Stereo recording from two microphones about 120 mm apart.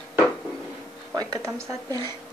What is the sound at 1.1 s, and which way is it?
Speech, 30° right (ahead or behind).